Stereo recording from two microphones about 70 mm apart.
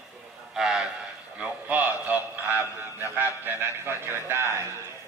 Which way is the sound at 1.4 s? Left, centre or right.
Right.